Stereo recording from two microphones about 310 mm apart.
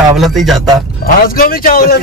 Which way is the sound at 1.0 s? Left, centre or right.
Left.